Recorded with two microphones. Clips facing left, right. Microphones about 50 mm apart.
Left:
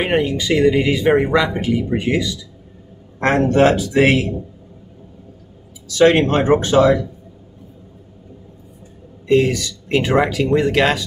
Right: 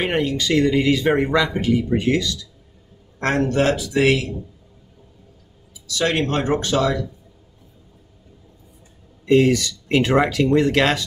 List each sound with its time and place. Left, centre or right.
0.0 s speech: centre
3.4 s speech: left
5.9 s speech: left
9.3 s speech: centre